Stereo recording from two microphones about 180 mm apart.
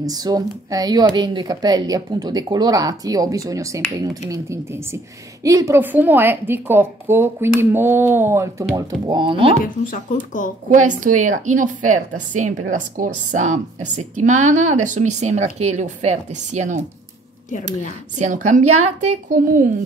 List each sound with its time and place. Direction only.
0.0 s a woman's voice: 20° right (ahead or behind)
9.8 s speech: 45° left (ahead or behind)
10.7 s a woman's voice: 45° right (ahead or behind)
18.1 s a woman's voice: 40° right (ahead or behind)